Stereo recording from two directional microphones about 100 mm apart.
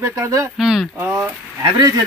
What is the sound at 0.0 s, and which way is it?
Speech, 30° right (ahead or behind).